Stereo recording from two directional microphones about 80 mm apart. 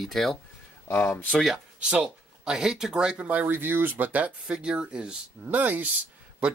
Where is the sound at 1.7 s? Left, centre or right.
Centre.